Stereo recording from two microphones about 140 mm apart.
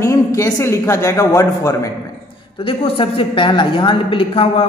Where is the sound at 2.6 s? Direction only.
40° left (ahead or behind).